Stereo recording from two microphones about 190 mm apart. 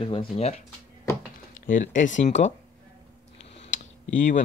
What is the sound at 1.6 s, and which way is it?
Speech, 45° left (ahead or behind).